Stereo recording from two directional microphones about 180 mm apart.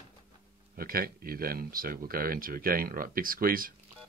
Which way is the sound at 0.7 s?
55° right (ahead or behind).